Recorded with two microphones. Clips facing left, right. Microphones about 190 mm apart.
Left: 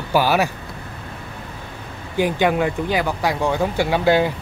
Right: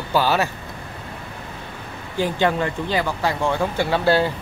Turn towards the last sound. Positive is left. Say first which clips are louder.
# left 2 dB
turn(degrees=15)  # may be behind; listen again after turning